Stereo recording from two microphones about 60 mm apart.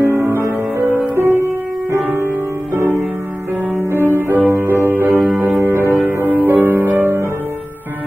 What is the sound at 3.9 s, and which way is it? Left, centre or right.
Music, right.